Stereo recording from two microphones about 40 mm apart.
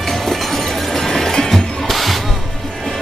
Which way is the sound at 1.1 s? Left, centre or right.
Centre.